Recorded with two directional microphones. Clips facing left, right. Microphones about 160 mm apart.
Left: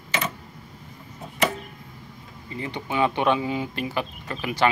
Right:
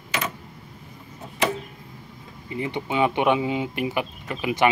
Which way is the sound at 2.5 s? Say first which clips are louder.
Right 3 dB; 20° right (ahead or behind).